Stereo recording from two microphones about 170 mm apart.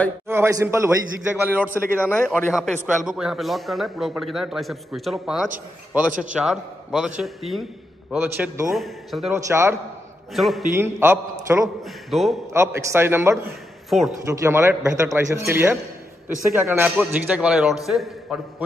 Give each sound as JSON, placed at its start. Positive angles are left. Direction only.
{"t": 0.3, "sound": "a man's voice", "side_deg": -15}
{"t": 2.0, "sound": "a man's voice", "side_deg": 10}
{"t": 2.5, "sound": "a man's voice", "side_deg": -5}
{"t": 8.7, "sound": "a man's voice", "side_deg": 0}
{"t": 9.3, "sound": "a man's voice", "side_deg": -15}
{"t": 10.3, "sound": "a man's voice", "side_deg": 0}
{"t": 10.7, "sound": "a man's voice", "side_deg": -15}
{"t": 11.8, "sound": "a man's voice", "side_deg": 0}
{"t": 12.5, "sound": "a man's voice", "side_deg": -15}
{"t": 13.8, "sound": "a man's voice", "side_deg": 0}
{"t": 14.2, "sound": "a man's voice", "side_deg": -15}